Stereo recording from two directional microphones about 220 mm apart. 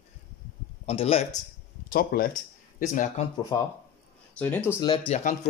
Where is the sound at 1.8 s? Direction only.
40° left (ahead or behind).